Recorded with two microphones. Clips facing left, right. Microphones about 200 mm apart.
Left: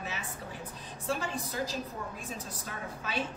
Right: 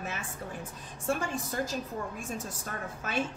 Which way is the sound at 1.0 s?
50° right (ahead or behind).